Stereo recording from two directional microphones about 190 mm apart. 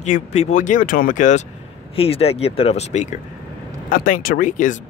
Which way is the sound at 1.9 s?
30° left (ahead or behind).